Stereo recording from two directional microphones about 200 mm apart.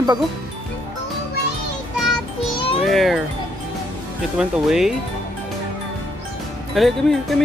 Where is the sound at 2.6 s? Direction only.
25° left (ahead or behind).